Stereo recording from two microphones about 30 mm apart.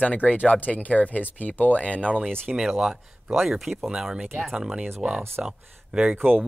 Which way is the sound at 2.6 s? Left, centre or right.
Centre.